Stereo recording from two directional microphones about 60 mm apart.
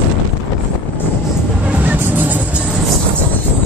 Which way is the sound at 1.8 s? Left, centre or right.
Right.